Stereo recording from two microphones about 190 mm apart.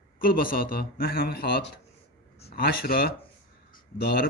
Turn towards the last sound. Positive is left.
turn(degrees=55)  # may be behind; listen again after turning